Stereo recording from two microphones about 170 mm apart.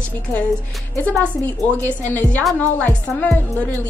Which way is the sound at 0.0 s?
10° left (ahead or behind).